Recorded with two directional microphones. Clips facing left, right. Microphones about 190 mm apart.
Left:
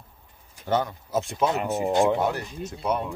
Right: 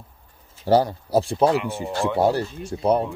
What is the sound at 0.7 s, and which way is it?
Speech, 35° right (ahead or behind).